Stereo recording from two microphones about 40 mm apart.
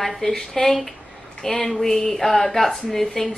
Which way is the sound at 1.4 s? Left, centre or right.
Left.